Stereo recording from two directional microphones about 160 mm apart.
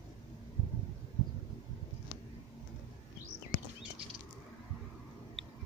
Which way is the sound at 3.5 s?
65° left (ahead or behind).